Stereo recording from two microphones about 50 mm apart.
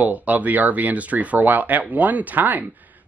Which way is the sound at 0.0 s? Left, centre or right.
Right.